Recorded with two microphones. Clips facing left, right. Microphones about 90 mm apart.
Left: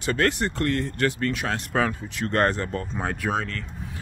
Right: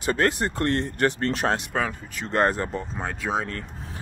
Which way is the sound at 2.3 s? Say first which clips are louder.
Right 1 dB; 10° right (ahead or behind).